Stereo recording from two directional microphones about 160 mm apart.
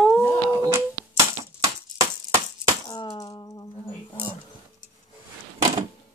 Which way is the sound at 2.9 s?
25° left (ahead or behind).